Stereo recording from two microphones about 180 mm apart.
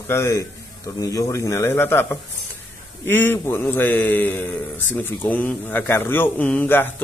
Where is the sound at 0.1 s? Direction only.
15° left (ahead or behind).